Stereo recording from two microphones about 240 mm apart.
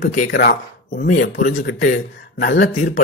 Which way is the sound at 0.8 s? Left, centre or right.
Left.